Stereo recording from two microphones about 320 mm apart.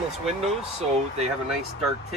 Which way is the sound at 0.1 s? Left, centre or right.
Centre.